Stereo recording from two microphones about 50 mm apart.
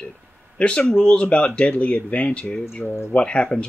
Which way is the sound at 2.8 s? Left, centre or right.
Left.